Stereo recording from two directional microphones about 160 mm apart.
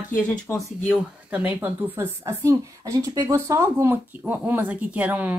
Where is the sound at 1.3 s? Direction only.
10° right (ahead or behind).